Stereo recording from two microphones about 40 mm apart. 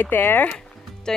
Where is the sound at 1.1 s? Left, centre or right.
Centre.